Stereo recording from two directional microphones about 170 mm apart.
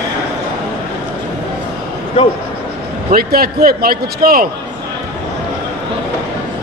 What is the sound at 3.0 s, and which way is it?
A man's voice, 60° right (ahead or behind).